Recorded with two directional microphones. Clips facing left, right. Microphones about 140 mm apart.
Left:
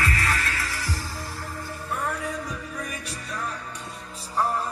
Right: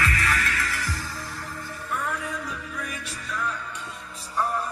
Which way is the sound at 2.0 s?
35° left (ahead or behind).